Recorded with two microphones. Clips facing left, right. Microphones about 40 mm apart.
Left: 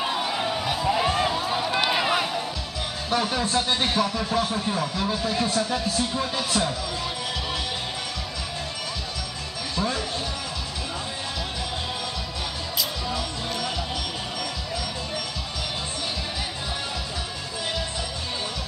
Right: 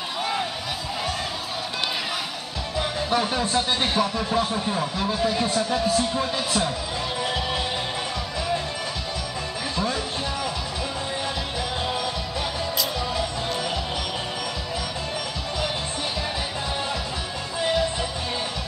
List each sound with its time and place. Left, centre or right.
0.2 s a sound: centre
0.8 s run: centre
3.1 s speech: centre